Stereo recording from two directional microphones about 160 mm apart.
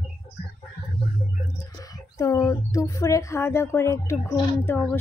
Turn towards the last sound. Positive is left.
turn(degrees=15)  # may be behind; listen again after turning